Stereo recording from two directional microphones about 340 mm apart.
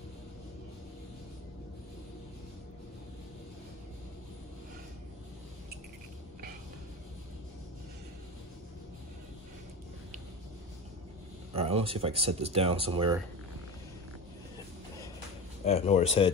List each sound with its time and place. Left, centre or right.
11.5 s speech: centre
15.6 s speech: centre